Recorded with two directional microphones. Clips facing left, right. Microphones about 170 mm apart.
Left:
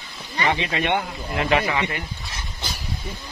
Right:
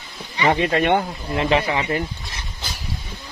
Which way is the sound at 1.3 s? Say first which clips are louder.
Right 2 dB; 30° right (ahead or behind).